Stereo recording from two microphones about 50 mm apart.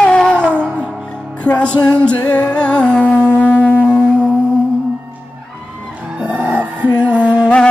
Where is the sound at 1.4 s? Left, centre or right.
Left.